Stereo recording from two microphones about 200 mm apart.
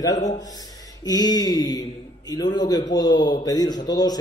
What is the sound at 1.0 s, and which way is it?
A man's voice, 20° left (ahead or behind).